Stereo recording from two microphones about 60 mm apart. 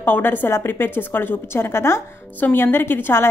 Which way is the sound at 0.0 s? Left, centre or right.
Left.